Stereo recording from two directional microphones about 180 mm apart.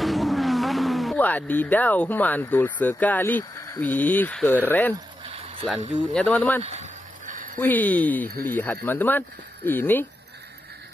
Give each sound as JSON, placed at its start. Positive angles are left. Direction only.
{"t": 0.0, "sound": "speech", "side_deg": 0}
{"t": 5.2, "sound": "a sound", "side_deg": -30}
{"t": 5.8, "sound": "speech", "side_deg": -40}
{"t": 6.1, "sound": "speech", "side_deg": 10}
{"t": 6.6, "sound": "a sound", "side_deg": -40}
{"t": 7.5, "sound": "speech", "side_deg": 10}